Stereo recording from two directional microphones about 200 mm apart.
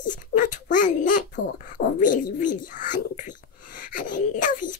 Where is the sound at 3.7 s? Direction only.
40° left (ahead or behind).